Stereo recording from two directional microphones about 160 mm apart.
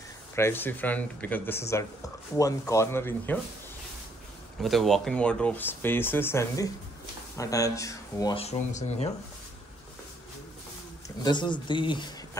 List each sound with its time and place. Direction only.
0.4 s speech: 15° left (ahead or behind)
4.6 s speech: centre (ahead or behind); by 8.4 s 20° left (ahead or behind)
8.4 s speech: 45° left (ahead or behind)
11.2 s speech: 30° left (ahead or behind)